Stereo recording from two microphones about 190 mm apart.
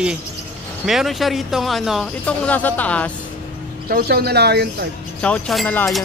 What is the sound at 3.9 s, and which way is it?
Speech, 55° right (ahead or behind).